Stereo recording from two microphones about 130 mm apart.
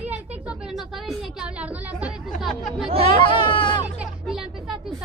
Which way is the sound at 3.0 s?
40° left (ahead or behind).